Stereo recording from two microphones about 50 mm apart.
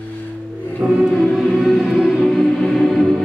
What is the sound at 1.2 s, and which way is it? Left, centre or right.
Music, centre.